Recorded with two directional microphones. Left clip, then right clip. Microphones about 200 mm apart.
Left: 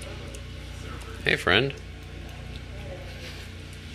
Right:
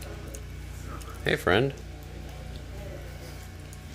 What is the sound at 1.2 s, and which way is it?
Speech, 20° right (ahead or behind).